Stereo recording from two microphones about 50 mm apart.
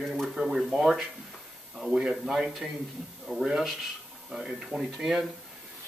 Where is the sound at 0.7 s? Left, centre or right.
Centre.